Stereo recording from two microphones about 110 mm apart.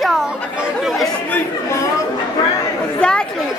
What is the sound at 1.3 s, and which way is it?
Chatter, 25° left (ahead or behind).